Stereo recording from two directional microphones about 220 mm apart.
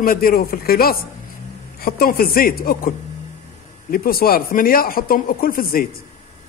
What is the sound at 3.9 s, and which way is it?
A man's voice, 40° left (ahead or behind).